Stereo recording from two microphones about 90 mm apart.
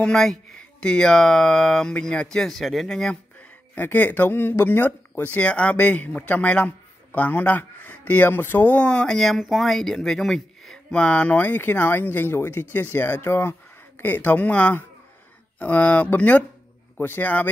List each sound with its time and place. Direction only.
0.0 s speech: 5° left (ahead or behind)
3.7 s speech: 20° left (ahead or behind)